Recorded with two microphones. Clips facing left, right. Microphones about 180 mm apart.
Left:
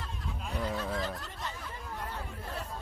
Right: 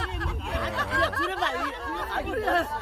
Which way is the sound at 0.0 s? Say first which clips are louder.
Right 7 dB; 75° right (ahead or behind).